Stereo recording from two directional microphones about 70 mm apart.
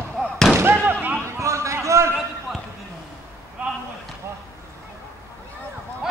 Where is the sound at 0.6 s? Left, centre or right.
Right.